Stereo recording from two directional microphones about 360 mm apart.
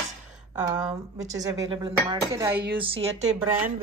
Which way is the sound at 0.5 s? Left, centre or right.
Centre.